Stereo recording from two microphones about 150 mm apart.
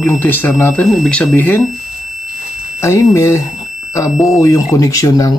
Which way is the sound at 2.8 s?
20° left (ahead or behind).